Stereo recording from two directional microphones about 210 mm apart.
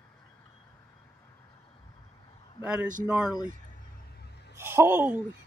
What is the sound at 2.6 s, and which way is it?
Speech, 5° right (ahead or behind).